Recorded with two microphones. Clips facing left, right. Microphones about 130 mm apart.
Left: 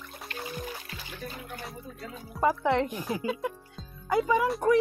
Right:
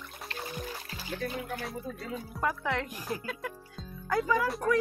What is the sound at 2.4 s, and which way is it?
Speech, 30° left (ahead or behind).